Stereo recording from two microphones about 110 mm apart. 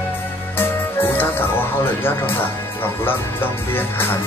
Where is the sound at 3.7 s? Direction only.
20° left (ahead or behind).